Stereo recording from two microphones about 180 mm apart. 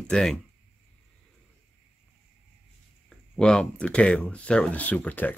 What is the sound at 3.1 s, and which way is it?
Speech, 5° left (ahead or behind).